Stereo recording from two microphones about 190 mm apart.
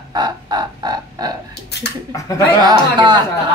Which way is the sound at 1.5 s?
60° left (ahead or behind).